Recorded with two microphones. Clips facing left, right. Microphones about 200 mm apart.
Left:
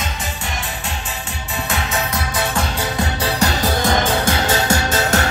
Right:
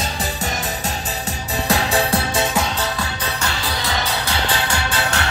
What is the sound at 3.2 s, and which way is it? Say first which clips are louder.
Music: left 9 dB; 35° left (ahead or behind).